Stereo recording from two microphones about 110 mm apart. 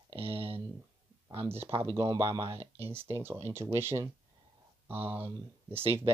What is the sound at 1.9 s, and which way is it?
Speech, 30° right (ahead or behind).